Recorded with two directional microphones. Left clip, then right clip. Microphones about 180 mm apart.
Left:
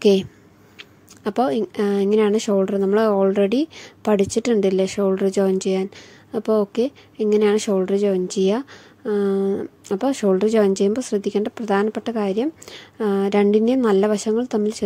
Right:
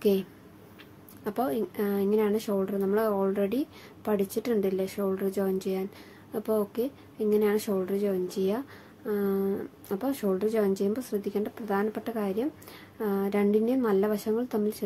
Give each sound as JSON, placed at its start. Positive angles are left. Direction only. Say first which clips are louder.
{"t": 0.0, "sound": "speech", "louder": "left 10 dB", "side_deg": 45}